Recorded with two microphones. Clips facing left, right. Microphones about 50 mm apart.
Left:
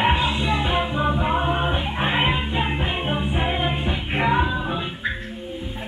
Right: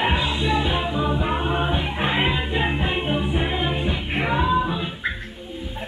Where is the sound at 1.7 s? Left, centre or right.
Left.